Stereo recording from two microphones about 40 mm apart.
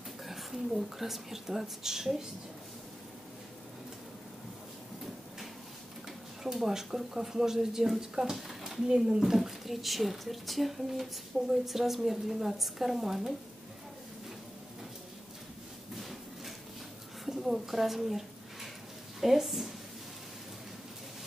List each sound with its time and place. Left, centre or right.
0.2 s speech: centre
6.4 s speech: centre
8.8 s speech: centre
9.2 s speech: centre
16.0 s a sound: centre
19.2 s speech: centre